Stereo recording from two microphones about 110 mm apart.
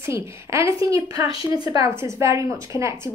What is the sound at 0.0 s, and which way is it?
Speech, 25° right (ahead or behind).